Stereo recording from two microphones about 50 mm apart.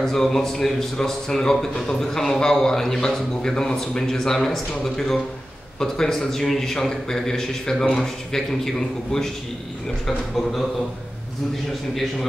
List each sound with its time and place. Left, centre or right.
0.0 s a man's voice: centre
11.9 s a man's voice: centre